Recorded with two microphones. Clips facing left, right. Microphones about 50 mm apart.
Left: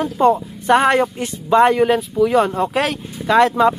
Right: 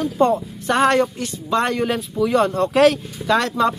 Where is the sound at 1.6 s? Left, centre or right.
Centre.